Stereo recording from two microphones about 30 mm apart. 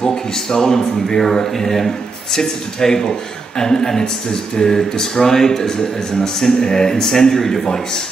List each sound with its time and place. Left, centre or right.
0.0 s speech: centre